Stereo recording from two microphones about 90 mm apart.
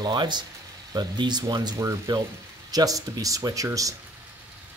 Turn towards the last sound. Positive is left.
turn(degrees=-40)  # may be behind; listen again after turning